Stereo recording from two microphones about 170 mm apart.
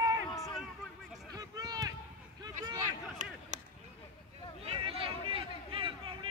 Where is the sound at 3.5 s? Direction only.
45° right (ahead or behind).